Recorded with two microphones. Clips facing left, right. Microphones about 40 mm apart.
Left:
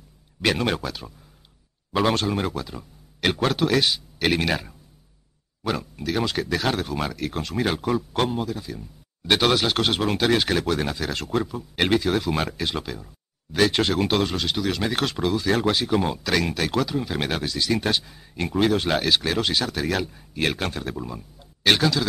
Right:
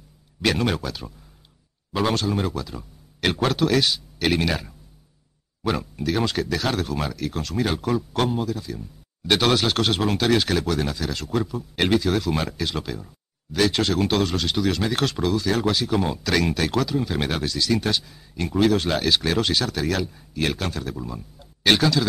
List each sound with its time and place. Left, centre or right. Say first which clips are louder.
0.4 s speech: even; centre
2.7 s speech: right 1 dB; centre
5.6 s speech: right 2 dB; centre
7.2 s speech: even; left
12.8 s speech: right 2 dB; centre
13.5 s speech: left 1 dB; left
15.3 s speech: even; left
15.9 s speech: even; centre
17.6 s speech: even; centre
20.3 s speech: even; left
20.9 s speech: even; centre
21.4 s a sound: right 1 dB; centre